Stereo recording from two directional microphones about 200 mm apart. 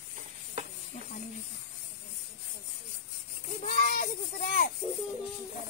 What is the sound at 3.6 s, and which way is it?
Speech, 35° left (ahead or behind).